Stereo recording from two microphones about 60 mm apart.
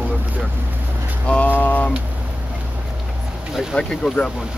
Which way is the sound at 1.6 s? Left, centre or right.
Left.